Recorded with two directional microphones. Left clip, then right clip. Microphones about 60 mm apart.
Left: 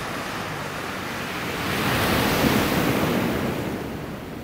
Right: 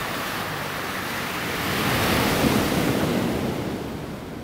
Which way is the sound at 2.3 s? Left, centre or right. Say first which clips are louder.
Left 1 dB; left.